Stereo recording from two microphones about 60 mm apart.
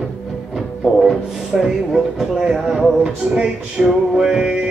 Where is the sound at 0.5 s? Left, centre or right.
Centre.